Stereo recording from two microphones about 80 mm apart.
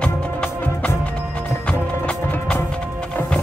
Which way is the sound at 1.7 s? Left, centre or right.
Centre.